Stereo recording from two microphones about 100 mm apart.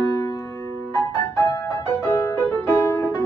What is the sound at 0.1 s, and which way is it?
Music, 30° left (ahead or behind).